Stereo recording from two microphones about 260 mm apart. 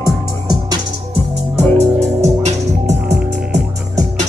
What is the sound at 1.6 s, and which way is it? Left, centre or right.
Music, right.